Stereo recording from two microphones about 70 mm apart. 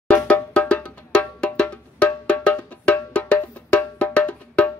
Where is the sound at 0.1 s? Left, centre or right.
Centre.